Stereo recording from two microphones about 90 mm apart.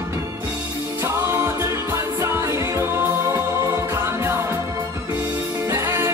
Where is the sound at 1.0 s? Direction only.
30° right (ahead or behind).